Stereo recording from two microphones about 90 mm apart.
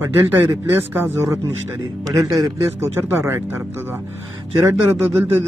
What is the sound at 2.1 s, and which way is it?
Speech, 40° right (ahead or behind).